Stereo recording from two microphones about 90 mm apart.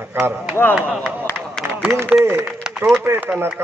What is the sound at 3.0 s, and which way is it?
Speech, 20° right (ahead or behind).